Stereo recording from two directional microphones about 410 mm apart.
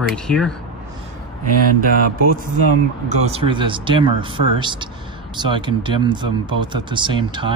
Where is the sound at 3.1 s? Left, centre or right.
Centre.